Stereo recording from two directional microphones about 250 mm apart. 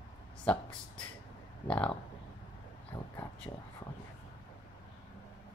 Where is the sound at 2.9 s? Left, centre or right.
Centre.